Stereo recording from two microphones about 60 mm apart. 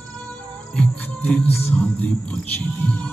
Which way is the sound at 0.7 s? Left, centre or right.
Left.